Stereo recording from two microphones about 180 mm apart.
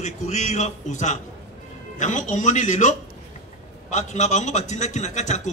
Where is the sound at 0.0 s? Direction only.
40° left (ahead or behind).